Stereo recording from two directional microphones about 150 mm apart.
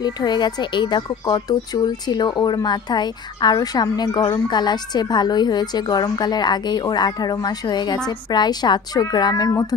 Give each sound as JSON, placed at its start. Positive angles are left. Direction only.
{"t": 0.0, "sound": "a woman's voice", "side_deg": 30}